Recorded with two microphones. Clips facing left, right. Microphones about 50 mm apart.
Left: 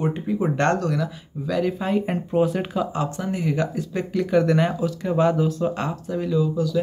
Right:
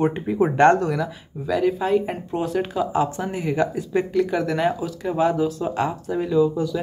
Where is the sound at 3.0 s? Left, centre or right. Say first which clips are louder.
Right 4 dB; right.